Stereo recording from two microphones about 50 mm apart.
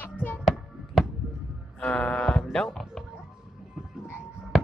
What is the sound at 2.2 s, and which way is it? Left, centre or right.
Speech, centre.